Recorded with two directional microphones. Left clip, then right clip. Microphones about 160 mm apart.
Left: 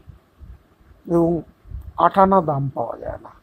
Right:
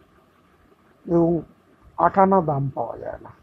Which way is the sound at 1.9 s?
25° left (ahead or behind).